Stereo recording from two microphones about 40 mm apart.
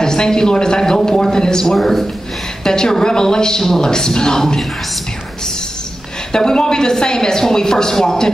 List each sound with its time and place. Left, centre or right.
0.0 s a woman's voice: centre
1.8 s speech: centre
2.6 s a woman's voice: centre
6.3 s a woman's voice: centre